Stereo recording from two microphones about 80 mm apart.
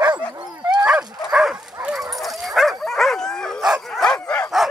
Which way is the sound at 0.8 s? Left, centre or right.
Centre.